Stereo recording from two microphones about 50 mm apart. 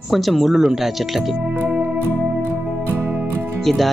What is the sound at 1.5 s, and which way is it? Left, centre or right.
Music, centre.